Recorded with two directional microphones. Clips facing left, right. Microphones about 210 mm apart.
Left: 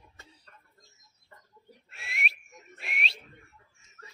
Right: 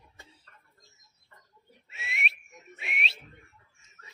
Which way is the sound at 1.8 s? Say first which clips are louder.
Right 1 dB; centre (ahead or behind).